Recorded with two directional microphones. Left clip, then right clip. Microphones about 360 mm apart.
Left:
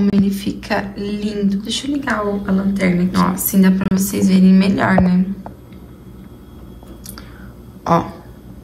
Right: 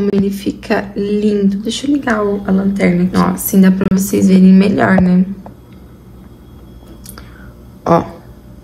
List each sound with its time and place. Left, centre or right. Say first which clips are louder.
0.0 s speech: right 3 dB; centre
7.8 s speech: right 4 dB; centre